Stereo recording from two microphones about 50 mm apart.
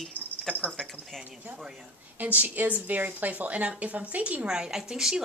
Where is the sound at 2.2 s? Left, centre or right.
Right.